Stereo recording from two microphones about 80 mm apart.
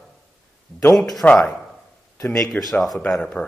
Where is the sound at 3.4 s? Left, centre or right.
Left.